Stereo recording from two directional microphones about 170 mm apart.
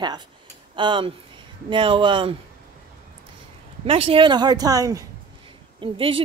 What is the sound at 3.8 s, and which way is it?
Speech, 35° right (ahead or behind).